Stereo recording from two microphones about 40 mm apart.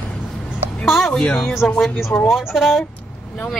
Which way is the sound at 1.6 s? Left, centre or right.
Centre.